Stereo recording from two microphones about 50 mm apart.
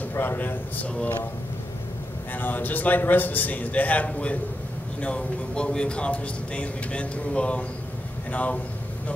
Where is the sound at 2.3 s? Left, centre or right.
Left.